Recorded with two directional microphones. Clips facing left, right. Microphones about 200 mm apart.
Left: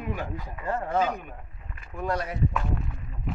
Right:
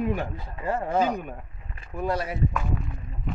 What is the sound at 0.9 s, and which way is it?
Speech, 40° right (ahead or behind).